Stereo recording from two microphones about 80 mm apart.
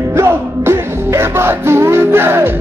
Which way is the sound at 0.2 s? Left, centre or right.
Right.